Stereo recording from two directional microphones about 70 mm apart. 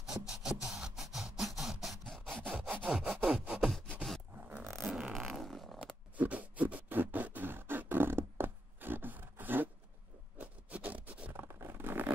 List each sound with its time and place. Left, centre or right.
0.3 s a sound: centre
2.1 s wood: centre
2.5 s sawing: centre
4.8 s fart: centre
6.1 s beatboxing: right
10.3 s a sound: right
11.3 s zipper: right